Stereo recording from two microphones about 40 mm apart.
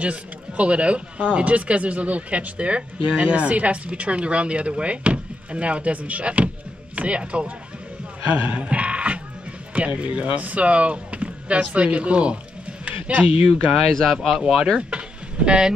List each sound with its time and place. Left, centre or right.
0.0 s speech: right
8.3 s music: right
9.8 s speech: right
12.8 s a sound: right
13.8 s speech: centre
14.5 s speech: right